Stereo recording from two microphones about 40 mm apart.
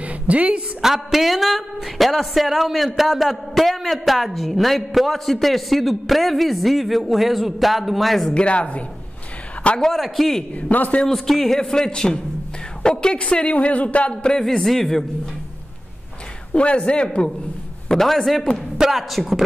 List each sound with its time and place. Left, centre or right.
0.0 s a sound: right
0.8 s speech: centre
8.3 s speech: left
9.9 s speech: centre
10.5 s speech: left
11.1 s speech: centre; by 14.3 s left
14.3 s speech: centre
16.5 s speech: left
17.8 s speech: centre